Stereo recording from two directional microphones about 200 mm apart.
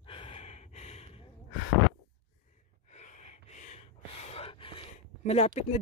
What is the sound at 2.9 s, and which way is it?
Gasp, 35° left (ahead or behind).